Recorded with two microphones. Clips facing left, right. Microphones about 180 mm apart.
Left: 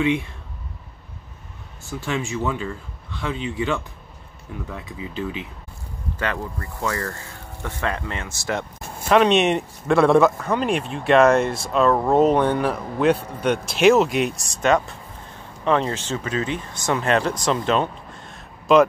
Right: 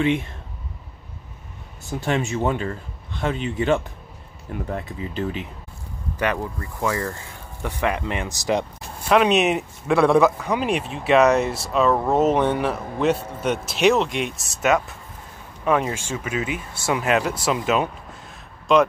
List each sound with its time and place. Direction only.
2.0 s speech: 40° right (ahead or behind)
6.1 s speech: 15° right (ahead or behind)
9.1 s speech: 5° right (ahead or behind)